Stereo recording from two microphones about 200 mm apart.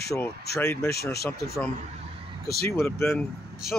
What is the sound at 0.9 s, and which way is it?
Speech, 50° left (ahead or behind).